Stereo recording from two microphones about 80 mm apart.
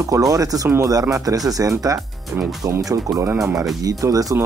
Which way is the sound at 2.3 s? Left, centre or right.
Right.